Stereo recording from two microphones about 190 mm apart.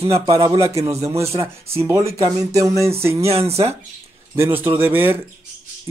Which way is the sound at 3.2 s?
30° right (ahead or behind).